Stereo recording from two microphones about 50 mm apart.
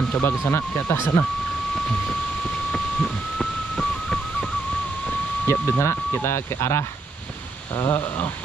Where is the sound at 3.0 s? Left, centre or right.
Centre.